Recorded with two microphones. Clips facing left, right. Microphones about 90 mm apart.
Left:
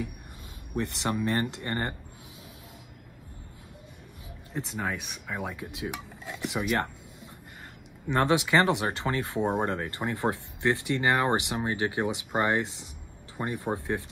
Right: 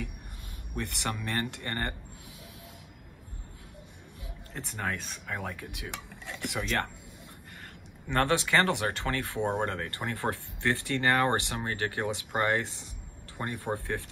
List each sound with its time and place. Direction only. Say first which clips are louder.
0.7 s speech: left 5 dB; 20° left (ahead or behind)
4.6 s speech: left 3 dB; 15° left (ahead or behind)
8.1 s speech: left 3 dB; 15° left (ahead or behind)